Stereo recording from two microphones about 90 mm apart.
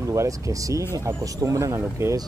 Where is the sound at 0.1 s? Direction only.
35° right (ahead or behind).